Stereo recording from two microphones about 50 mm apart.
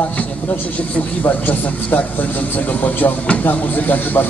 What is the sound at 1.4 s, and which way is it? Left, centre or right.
Speech, left.